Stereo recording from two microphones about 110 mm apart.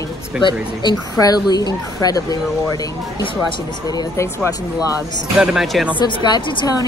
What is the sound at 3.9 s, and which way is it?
Speech, 35° left (ahead or behind).